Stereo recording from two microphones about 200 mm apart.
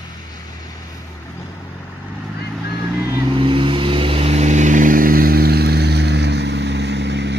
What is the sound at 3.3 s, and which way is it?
Vehicle, 25° right (ahead or behind).